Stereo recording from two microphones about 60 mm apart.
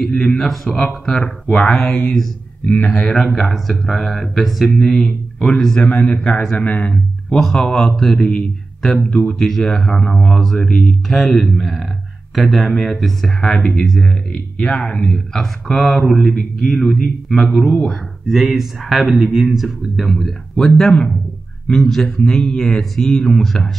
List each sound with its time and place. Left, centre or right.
0.0 s speech: centre
5.8 s speech: centre